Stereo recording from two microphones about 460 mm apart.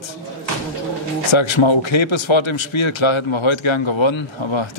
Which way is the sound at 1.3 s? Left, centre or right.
Left.